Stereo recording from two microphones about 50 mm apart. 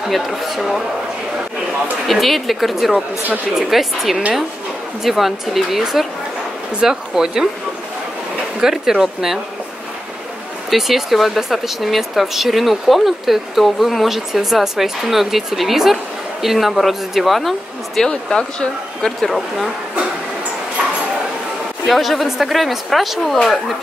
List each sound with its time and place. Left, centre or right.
0.1 s speech: centre
2.0 s speech: centre
8.5 s speech: centre
10.7 s speech: centre
18.3 s speech: centre
19.2 s speech: centre
21.8 s speech: centre